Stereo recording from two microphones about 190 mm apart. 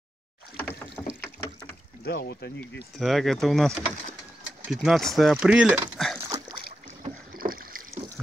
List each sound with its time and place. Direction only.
0.6 s rowboat: 10° left (ahead or behind)
2.0 s speech: 60° left (ahead or behind)
3.0 s speech: centre (ahead or behind)
6.1 s splash: 15° right (ahead or behind)
7.3 s rowboat: 50° right (ahead or behind)